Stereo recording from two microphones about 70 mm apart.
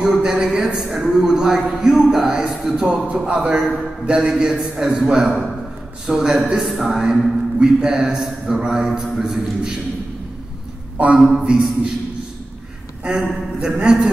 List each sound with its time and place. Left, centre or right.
0.0 s a man's voice: centre
11.1 s a man's voice: centre
13.2 s a man's voice: centre